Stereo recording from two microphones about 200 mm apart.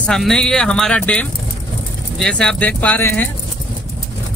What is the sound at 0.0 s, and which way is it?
Speech, centre (ahead or behind).